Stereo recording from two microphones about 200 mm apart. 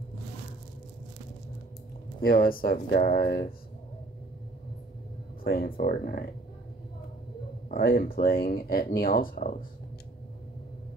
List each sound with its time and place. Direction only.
2.2 s speech: 45° left (ahead or behind)
5.4 s speech: 50° left (ahead or behind)
7.7 s speech: 45° left (ahead or behind)